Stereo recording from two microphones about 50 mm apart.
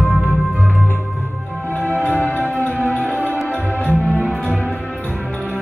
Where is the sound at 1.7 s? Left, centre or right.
Left.